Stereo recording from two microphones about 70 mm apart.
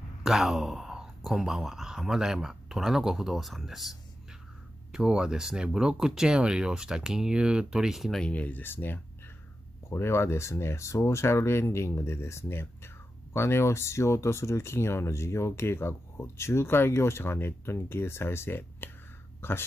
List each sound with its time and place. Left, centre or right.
0.2 s speech: centre
8.2 s speech: centre